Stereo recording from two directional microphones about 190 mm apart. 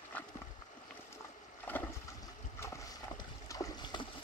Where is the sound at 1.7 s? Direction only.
15° left (ahead or behind).